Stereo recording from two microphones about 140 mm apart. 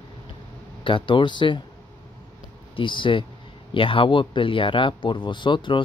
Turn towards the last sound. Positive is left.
turn(degrees=35)  # may be behind; listen again after turning